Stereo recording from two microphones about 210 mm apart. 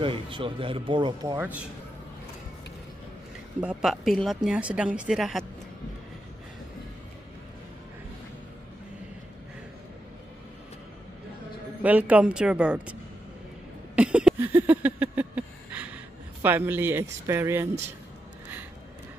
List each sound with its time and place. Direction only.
0.0 s speech: 25° right (ahead or behind)
3.6 s a woman's voice: centre (ahead or behind)
11.8 s a woman's voice: 5° right (ahead or behind)
13.9 s a sound: 5° right (ahead or behind)
16.4 s a man's voice: 10° right (ahead or behind)